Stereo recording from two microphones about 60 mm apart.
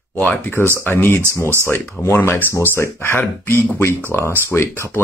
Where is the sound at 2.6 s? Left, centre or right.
Left.